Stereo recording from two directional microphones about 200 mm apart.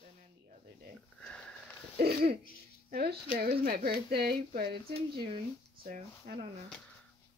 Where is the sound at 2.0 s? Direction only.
50° right (ahead or behind).